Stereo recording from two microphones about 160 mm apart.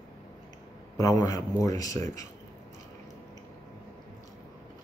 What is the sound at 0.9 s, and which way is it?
Speech, 20° left (ahead or behind).